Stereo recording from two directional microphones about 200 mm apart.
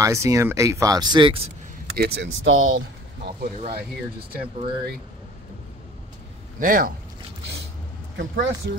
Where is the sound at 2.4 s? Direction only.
75° right (ahead or behind).